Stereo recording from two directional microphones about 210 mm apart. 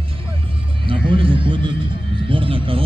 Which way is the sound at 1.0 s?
25° right (ahead or behind).